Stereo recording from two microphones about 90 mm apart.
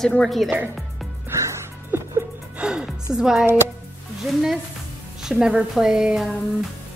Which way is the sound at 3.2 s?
5° right (ahead or behind).